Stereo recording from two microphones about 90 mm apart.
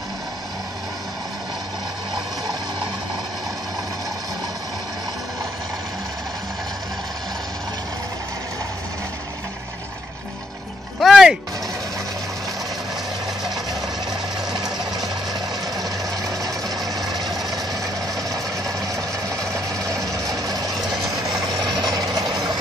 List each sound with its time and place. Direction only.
11.0 s music: 5° right (ahead or behind)
15.8 s vehicle: 40° right (ahead or behind)
18.3 s engine: 40° right (ahead or behind)
20.1 s vehicle: 40° right (ahead or behind)